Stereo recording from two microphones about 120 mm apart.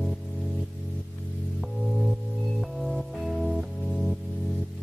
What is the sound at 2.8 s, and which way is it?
Music, centre (ahead or behind).